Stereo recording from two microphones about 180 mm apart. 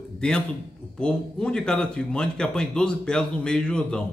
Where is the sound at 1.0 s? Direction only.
5° left (ahead or behind).